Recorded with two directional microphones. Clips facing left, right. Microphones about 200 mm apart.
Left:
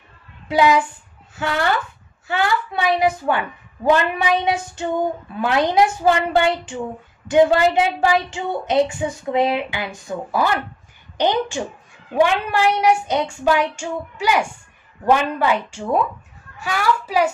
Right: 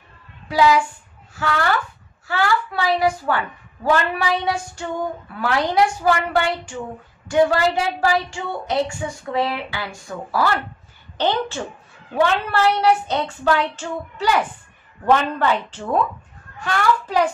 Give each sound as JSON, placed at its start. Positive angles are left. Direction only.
{"t": 0.5, "sound": "a woman's voice", "side_deg": 20}